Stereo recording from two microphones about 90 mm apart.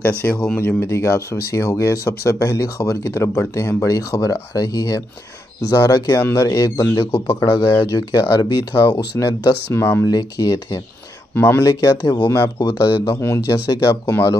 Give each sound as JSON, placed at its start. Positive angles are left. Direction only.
{"t": 0.2, "sound": "speech", "side_deg": 25}
{"t": 8.0, "sound": "speech", "side_deg": 45}
{"t": 9.8, "sound": "speech", "side_deg": 25}
{"t": 10.0, "sound": "speech", "side_deg": 40}
{"t": 11.3, "sound": "speech", "side_deg": 25}
{"t": 11.6, "sound": "speech", "side_deg": 45}
{"t": 12.5, "sound": "speech", "side_deg": 40}